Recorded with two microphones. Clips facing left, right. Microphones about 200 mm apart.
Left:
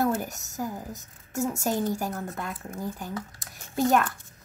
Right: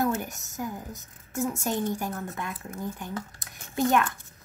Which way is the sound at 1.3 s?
40° left (ahead or behind).